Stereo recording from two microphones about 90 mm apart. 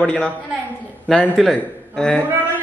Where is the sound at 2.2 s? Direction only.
20° right (ahead or behind).